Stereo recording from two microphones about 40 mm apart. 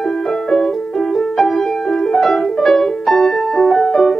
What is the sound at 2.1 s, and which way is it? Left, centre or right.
Music, centre.